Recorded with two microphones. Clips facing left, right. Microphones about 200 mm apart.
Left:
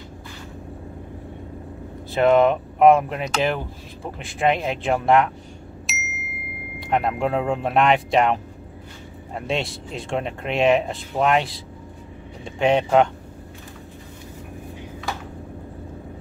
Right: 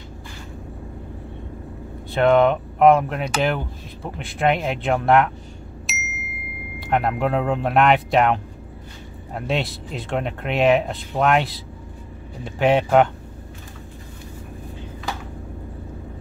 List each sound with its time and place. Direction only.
2.0 s speech: centre (ahead or behind)
5.9 s ding: centre (ahead or behind)
9.3 s speech: centre (ahead or behind)